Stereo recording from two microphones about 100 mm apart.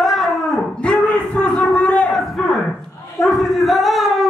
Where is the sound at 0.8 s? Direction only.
10° left (ahead or behind).